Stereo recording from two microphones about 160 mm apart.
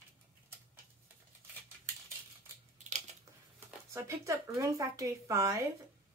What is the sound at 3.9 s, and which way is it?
Speech, 20° right (ahead or behind).